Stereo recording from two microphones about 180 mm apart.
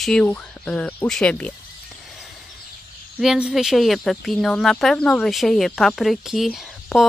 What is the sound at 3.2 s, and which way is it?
Speech, 5° right (ahead or behind).